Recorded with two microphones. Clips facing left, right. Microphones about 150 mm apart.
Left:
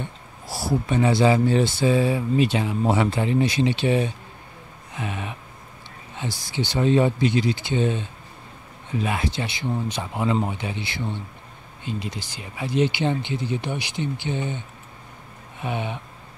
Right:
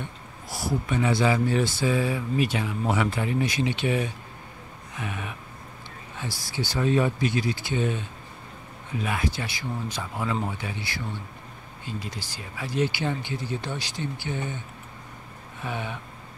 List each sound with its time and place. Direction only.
0.5 s speech: 30° left (ahead or behind)
6.5 s speech: 25° left (ahead or behind)
9.0 s speech: 25° left (ahead or behind)
15.6 s speech: 20° left (ahead or behind)